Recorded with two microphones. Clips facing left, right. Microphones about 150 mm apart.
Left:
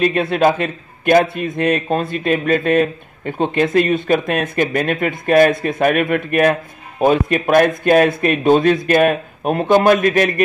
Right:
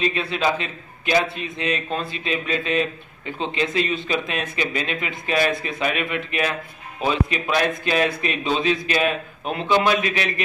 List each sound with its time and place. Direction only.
0.0 s a man's voice: 50° left (ahead or behind)